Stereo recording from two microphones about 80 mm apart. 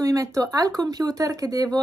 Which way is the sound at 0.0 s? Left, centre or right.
Right.